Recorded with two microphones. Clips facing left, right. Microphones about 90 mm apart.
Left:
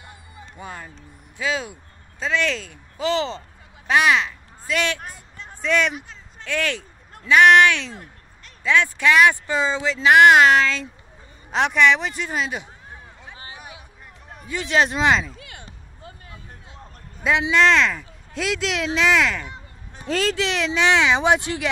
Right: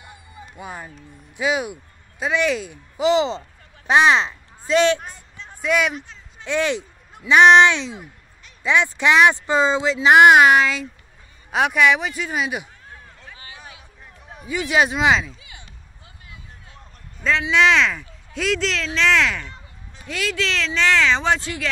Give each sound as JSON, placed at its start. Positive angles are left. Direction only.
{"t": 0.0, "sound": "music", "side_deg": -20}
{"t": 0.6, "sound": "speech", "side_deg": -15}
{"t": 5.0, "sound": "a sound", "side_deg": 5}
{"t": 5.6, "sound": "speech", "side_deg": -10}
{"t": 6.4, "sound": "speech", "side_deg": -20}
{"t": 12.9, "sound": "a sound", "side_deg": 15}
{"t": 14.2, "sound": "speech", "side_deg": -5}
{"t": 15.3, "sound": "a sound", "side_deg": 60}
{"t": 15.6, "sound": "a sound", "side_deg": 40}
{"t": 17.2, "sound": "a man's voice", "side_deg": 15}
{"t": 17.5, "sound": "speech", "side_deg": 0}
{"t": 20.0, "sound": "speech", "side_deg": 35}
{"t": 20.3, "sound": "speech", "side_deg": 20}